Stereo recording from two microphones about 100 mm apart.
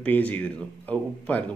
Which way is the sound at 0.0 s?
15° left (ahead or behind).